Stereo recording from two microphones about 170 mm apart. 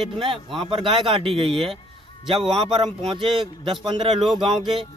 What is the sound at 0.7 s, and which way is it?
Speech, 30° right (ahead or behind).